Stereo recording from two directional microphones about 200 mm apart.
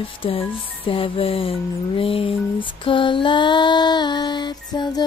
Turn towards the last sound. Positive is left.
turn(degrees=20)  # may be behind; listen again after turning